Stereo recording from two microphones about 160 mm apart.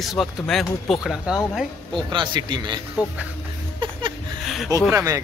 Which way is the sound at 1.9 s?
30° right (ahead or behind).